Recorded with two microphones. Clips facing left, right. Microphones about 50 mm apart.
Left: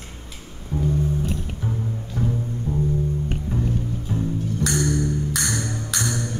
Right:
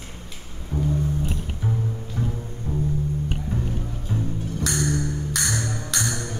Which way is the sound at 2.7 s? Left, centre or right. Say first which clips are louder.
Left 2 dB; right.